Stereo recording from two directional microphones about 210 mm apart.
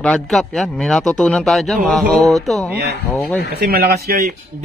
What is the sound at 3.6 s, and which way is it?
Speech, 45° right (ahead or behind).